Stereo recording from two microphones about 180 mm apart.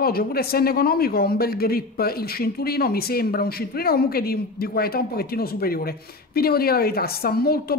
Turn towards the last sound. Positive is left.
turn(degrees=60)  # may be behind; listen again after turning